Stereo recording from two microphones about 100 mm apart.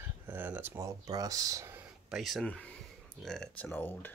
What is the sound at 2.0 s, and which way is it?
Speech, centre (ahead or behind).